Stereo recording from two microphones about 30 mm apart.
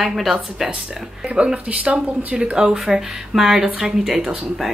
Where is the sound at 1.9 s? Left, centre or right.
Right.